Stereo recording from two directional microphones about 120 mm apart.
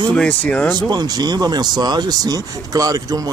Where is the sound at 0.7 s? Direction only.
35° right (ahead or behind).